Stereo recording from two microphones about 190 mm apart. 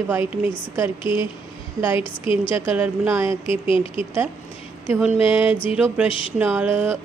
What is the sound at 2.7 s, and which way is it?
Speech, 10° right (ahead or behind).